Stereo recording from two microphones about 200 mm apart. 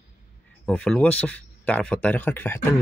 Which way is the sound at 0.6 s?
5° left (ahead or behind).